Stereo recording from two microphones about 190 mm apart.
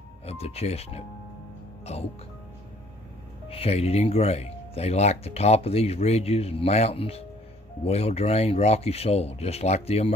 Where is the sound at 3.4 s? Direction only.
30° left (ahead or behind).